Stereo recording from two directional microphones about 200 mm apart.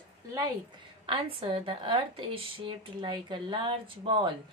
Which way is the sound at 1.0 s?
25° right (ahead or behind).